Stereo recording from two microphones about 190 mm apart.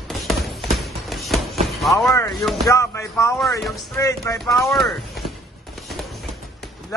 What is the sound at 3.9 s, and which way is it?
Speech, 15° left (ahead or behind).